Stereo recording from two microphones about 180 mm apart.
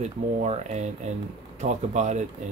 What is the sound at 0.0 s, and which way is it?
Speech, 40° right (ahead or behind).